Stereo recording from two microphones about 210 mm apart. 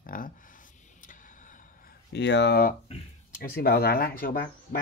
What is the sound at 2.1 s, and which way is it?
Speech, 55° left (ahead or behind).